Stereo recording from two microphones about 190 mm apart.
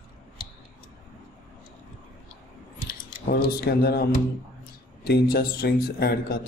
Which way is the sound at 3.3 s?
55° left (ahead or behind).